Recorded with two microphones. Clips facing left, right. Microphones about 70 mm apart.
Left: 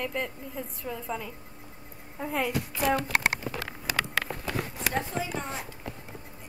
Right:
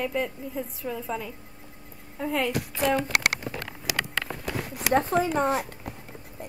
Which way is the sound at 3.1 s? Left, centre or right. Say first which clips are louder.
Right 1 dB; right.